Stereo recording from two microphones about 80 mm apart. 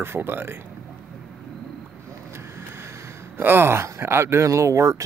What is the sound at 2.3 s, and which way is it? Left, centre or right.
Speech, right.